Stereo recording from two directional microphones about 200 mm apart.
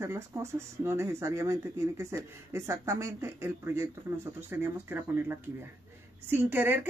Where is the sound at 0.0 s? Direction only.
15° right (ahead or behind).